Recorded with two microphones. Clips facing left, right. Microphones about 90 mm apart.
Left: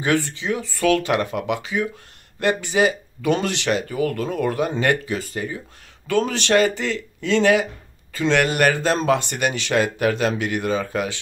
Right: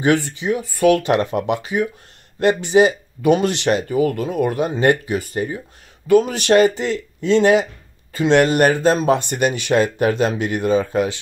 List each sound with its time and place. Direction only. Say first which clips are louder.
0.0 s speech: right 4 dB; 20° right (ahead or behind)